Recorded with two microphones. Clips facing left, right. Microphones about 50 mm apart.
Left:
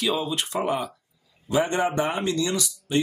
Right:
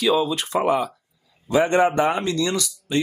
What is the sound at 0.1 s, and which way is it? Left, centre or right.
Speech, right.